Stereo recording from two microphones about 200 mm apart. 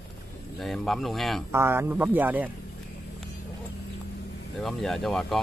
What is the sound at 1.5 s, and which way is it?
Speech, 10° right (ahead or behind).